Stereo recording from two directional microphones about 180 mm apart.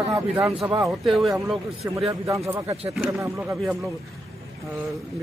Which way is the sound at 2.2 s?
15° right (ahead or behind).